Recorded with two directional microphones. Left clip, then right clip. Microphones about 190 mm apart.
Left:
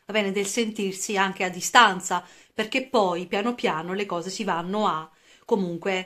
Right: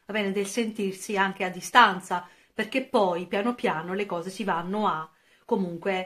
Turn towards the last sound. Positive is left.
turn(degrees=30)  # may be behind; listen again after turning